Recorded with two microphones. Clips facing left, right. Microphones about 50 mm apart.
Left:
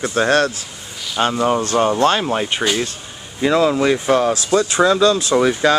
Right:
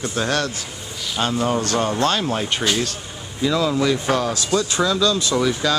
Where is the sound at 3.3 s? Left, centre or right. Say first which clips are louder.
Left 4 dB; left.